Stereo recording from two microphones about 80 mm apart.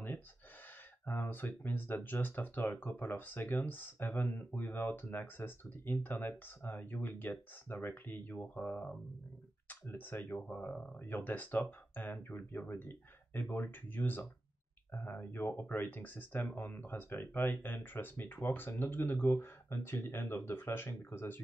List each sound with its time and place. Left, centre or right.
1.0 s speech: left